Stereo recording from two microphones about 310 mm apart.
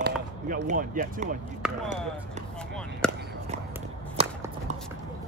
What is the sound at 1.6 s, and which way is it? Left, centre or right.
Speech, centre.